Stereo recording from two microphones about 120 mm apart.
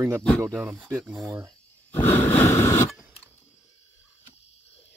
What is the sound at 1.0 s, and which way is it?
Speech, centre (ahead or behind).